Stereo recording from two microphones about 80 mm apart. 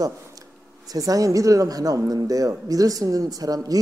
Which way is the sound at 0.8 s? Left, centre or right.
Right.